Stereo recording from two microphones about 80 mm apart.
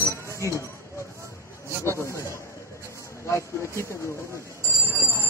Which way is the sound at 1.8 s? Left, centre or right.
Left.